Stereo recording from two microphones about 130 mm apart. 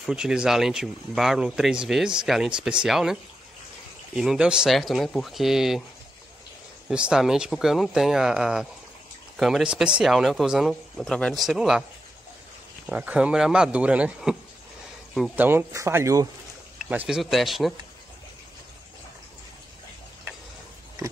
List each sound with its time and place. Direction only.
0.0 s speech: 5° right (ahead or behind)
6.9 s speech: 5° right (ahead or behind)
12.9 s speech: 10° right (ahead or behind)
15.3 s speech: 15° right (ahead or behind)
16.7 s a sound: 10° right (ahead or behind)
17.2 s speech: centre (ahead or behind)